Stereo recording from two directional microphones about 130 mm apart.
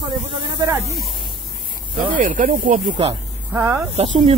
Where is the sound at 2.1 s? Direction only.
90° right.